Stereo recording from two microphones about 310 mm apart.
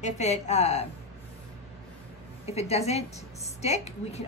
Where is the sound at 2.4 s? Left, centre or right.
Centre.